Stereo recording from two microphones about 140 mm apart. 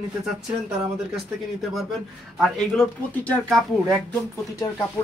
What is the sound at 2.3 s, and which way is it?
Speech, centre (ahead or behind).